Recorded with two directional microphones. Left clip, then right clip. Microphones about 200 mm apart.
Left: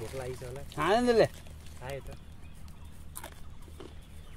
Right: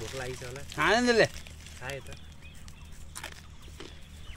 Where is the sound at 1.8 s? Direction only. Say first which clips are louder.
Right 2 dB; 10° left (ahead or behind).